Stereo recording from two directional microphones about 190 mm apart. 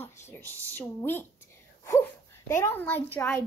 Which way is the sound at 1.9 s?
15° left (ahead or behind).